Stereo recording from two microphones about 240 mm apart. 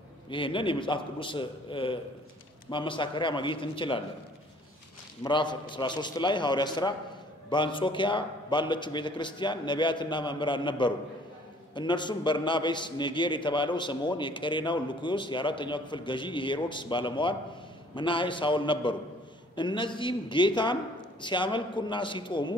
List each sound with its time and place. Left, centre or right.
0.3 s a man's voice: left
5.2 s a man's voice: centre